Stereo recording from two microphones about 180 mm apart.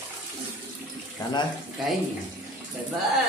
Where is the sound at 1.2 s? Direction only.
20° left (ahead or behind).